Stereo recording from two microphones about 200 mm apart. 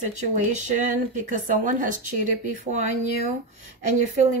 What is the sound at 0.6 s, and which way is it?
Speech, 40° right (ahead or behind).